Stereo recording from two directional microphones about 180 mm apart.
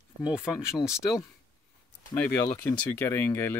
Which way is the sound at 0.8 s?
20° left (ahead or behind).